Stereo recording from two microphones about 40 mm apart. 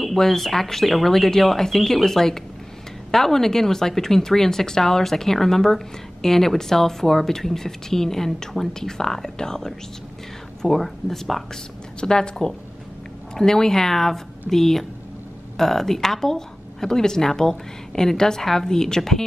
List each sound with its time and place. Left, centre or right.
0.0 s speech: centre
12.0 s a woman's voice: centre